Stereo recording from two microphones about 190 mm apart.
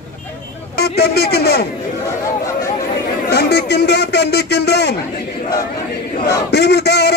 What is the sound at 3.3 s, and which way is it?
A man's voice, 60° left (ahead or behind).